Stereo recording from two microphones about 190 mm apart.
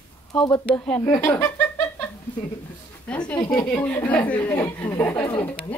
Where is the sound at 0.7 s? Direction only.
5° left (ahead or behind).